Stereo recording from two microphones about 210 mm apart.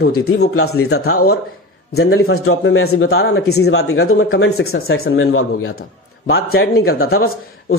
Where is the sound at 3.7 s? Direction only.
80° left.